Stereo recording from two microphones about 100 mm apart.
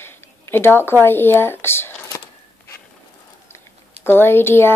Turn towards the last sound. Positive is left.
turn(degrees=25)  # may be behind; listen again after turning